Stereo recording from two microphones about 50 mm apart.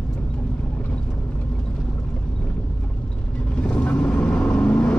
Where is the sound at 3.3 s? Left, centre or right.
Left.